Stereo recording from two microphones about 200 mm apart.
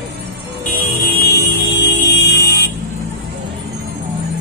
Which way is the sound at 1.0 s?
55° left (ahead or behind).